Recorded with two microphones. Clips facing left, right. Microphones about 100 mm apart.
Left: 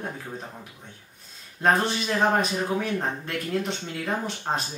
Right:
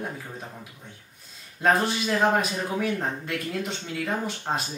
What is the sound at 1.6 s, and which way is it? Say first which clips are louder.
Speech: even; centre (ahead or behind).